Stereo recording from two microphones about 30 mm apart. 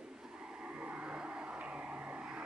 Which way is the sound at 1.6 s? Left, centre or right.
Right.